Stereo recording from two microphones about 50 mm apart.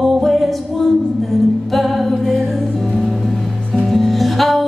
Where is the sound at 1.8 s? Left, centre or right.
Centre.